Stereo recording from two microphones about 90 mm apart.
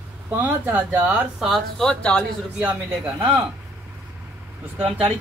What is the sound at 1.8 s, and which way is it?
Speech, 10° left (ahead or behind).